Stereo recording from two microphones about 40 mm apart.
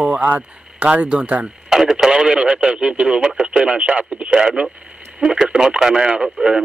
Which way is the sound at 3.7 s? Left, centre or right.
Right.